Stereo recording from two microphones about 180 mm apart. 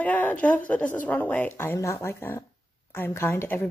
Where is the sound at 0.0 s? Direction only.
10° left (ahead or behind).